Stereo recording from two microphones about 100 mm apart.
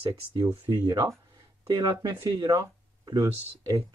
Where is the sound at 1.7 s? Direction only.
30° right (ahead or behind).